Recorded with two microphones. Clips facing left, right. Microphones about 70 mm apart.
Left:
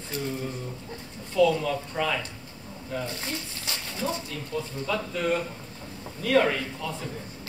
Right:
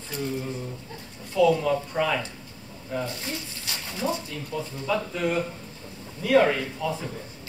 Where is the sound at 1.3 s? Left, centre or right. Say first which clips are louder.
Right 2 dB; centre.